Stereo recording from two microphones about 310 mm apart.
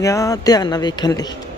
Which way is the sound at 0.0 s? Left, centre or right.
Centre.